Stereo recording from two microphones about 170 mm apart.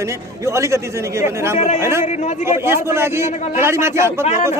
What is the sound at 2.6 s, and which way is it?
A man's voice, 15° right (ahead or behind).